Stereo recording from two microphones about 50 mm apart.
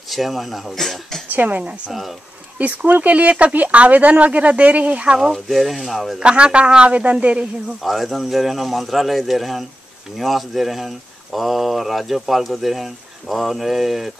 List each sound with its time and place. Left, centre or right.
0.1 s speech: centre
1.3 s a woman's voice: right
1.9 s speech: centre
2.6 s speech: right
5.3 s speech: centre
6.1 s speech: centre
7.8 s speech: centre